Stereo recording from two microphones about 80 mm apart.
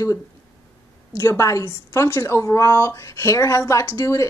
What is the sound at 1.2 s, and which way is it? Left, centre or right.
Speech, left.